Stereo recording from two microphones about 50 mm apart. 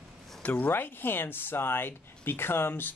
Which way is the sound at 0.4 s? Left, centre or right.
Left.